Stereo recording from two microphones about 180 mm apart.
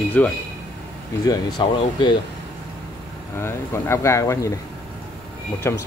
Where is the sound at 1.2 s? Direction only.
25° left (ahead or behind).